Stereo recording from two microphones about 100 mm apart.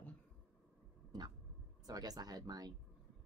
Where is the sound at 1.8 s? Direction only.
40° right (ahead or behind).